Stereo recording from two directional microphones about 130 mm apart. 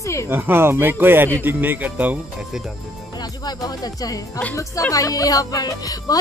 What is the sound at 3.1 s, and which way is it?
Speech, 30° left (ahead or behind).